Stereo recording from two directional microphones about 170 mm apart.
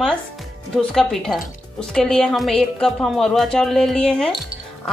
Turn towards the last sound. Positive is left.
turn(degrees=5)  # may be behind; listen again after turning